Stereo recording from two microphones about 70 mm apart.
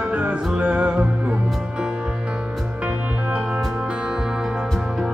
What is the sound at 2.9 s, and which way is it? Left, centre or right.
Music, right.